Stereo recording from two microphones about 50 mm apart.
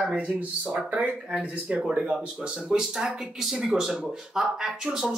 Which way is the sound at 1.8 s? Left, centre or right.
Right.